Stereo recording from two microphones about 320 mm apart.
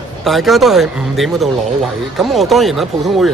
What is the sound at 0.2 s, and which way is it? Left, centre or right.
A man's voice, centre.